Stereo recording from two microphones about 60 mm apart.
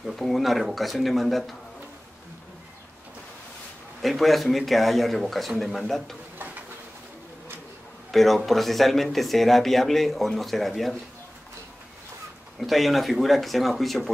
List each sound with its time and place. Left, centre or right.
0.0 s speech: centre
4.0 s speech: centre
6.3 s a sound: right
8.1 s speech: centre
12.5 s speech: centre